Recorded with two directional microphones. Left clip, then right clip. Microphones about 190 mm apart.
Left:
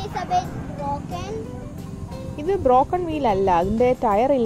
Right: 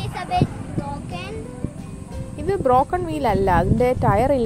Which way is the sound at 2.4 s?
5° left (ahead or behind).